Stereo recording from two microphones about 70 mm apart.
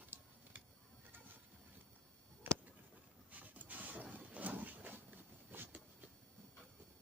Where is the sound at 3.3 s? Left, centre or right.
Right.